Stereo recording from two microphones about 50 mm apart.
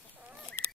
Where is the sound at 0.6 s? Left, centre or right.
Left.